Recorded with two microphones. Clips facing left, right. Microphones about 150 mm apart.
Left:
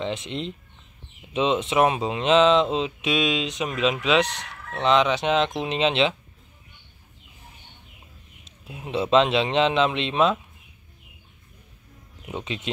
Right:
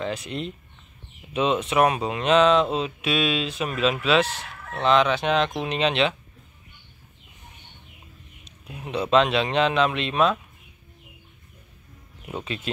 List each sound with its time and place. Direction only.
0.0 s speech: 25° left (ahead or behind)
8.9 s speech: 25° left (ahead or behind)